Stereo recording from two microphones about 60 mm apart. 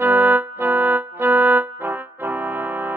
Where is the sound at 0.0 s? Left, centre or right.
Right.